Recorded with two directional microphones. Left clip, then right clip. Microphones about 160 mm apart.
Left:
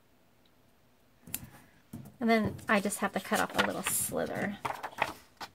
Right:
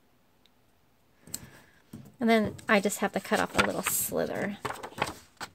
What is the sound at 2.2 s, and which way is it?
Speech, 45° right (ahead or behind).